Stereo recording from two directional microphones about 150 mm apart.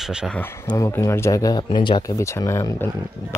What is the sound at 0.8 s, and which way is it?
Speech, 20° left (ahead or behind).